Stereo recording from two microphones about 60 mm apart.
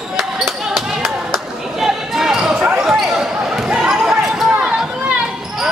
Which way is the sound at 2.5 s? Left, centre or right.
Right.